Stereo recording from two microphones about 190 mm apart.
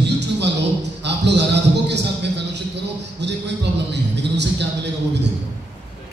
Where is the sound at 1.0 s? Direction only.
65° right (ahead or behind).